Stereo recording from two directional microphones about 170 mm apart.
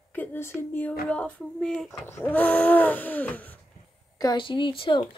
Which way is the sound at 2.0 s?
15° left (ahead or behind).